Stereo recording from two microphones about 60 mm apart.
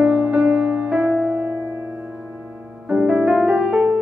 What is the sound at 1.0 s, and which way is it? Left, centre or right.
Music, centre.